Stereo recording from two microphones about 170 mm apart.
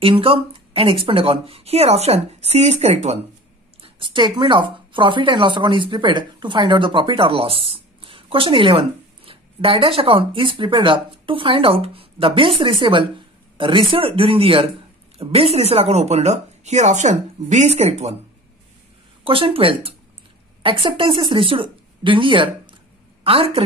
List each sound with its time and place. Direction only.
0.0 s speech: 30° right (ahead or behind)
3.8 s speech: 30° right (ahead or behind)
19.2 s a woman's voice: 30° right (ahead or behind)